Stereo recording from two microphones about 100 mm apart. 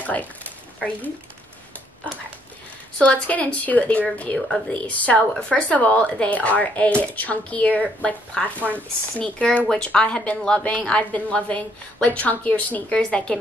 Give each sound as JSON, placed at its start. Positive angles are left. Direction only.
{"t": 0.0, "sound": "speech", "side_deg": 15}
{"t": 3.0, "sound": "speech", "side_deg": 15}
{"t": 8.5, "sound": "speech", "side_deg": -20}
{"t": 9.2, "sound": "speech", "side_deg": 10}